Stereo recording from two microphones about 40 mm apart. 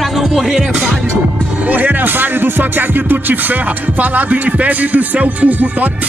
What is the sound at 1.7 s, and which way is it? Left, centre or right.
Music, right.